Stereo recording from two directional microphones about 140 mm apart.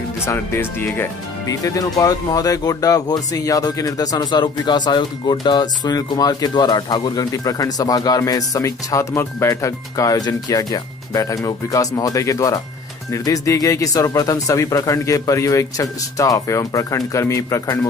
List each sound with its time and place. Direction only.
0.2 s speech: 20° left (ahead or behind)